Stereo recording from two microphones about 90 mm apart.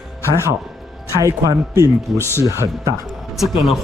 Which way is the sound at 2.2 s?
30° left (ahead or behind).